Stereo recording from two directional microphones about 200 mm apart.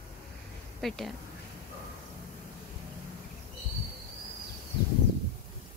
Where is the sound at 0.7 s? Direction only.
Centre (ahead or behind).